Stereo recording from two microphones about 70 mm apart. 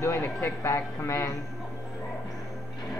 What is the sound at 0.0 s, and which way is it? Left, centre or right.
Speech, left.